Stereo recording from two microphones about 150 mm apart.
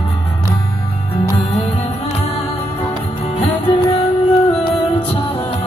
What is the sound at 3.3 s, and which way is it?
Music, 40° left (ahead or behind).